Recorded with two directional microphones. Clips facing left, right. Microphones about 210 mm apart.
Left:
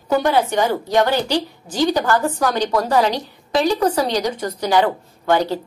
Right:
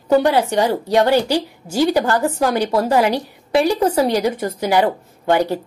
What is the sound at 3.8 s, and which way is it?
Speech, 25° right (ahead or behind).